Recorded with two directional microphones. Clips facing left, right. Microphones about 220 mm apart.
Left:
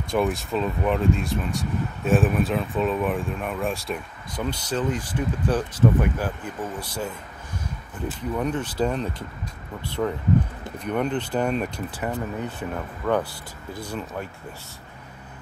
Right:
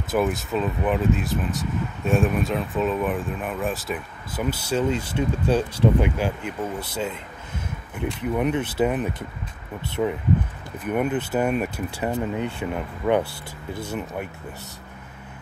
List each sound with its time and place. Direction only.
0.1 s speech: centre (ahead or behind)
4.8 s speech: 25° right (ahead or behind)
8.7 s speech: 10° right (ahead or behind)
9.8 s speech: 25° right (ahead or behind)
10.8 s speech: 5° right (ahead or behind)
12.0 s speech: 20° right (ahead or behind)